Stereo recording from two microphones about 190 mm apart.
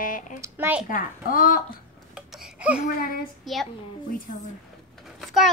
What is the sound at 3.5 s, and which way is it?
Speech, centre (ahead or behind).